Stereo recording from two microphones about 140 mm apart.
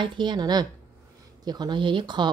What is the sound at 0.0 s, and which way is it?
Speech, 35° right (ahead or behind).